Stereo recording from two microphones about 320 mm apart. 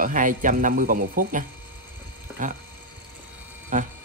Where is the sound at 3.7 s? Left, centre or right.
Right.